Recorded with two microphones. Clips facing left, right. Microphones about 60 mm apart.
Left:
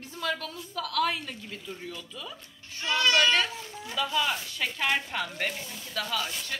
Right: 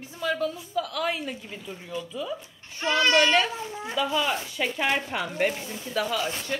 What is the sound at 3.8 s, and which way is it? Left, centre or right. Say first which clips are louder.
Speech: right 2 dB; centre.